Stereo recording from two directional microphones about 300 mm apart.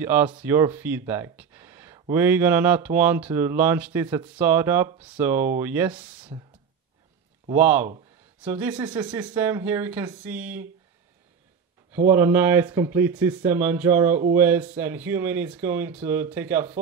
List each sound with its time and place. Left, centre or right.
0.0 s speech: centre
7.5 s speech: centre
11.9 s speech: centre